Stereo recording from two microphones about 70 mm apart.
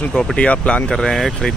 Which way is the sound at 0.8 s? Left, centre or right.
Centre.